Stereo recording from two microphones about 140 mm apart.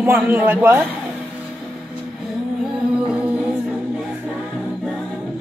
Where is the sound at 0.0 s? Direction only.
15° right (ahead or behind).